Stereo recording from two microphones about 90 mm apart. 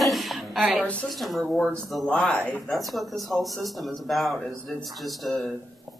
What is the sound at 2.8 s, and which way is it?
Speech, centre (ahead or behind).